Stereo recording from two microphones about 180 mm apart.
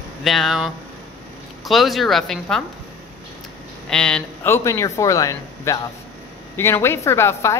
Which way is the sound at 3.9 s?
5° left (ahead or behind).